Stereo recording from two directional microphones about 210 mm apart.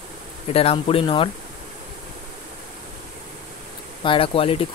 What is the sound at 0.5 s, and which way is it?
Speech, 25° left (ahead or behind).